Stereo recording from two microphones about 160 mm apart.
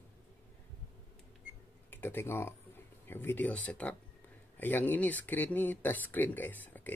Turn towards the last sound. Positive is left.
turn(degrees=10)  # may be behind; listen again after turning